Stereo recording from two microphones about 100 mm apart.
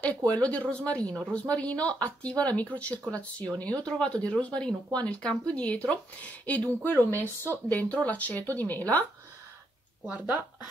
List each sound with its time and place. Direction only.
0.0 s speech: 15° left (ahead or behind)